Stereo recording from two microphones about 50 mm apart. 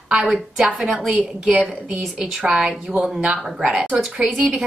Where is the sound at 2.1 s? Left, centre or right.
Centre.